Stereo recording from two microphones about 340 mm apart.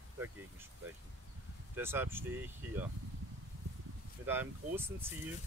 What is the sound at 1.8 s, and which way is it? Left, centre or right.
Speech, centre.